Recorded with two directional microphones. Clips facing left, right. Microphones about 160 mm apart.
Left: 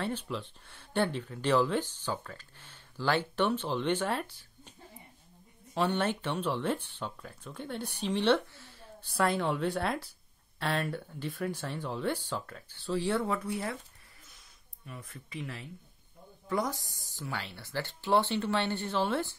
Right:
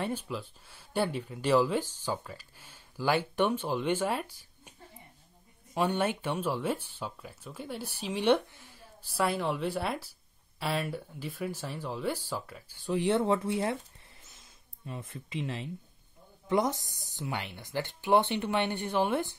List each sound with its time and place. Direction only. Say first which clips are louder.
0.0 s speech: right 1 dB; 10° right (ahead or behind)
5.8 s speech: right 1 dB; 10° right (ahead or behind)
14.9 s speech: right 5 dB; 25° right (ahead or behind)